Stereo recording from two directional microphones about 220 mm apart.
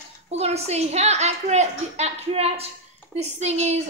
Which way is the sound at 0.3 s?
30° right (ahead or behind).